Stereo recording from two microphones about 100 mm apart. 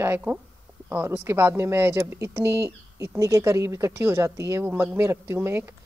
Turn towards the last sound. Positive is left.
turn(degrees=-20)  # may be behind; listen again after turning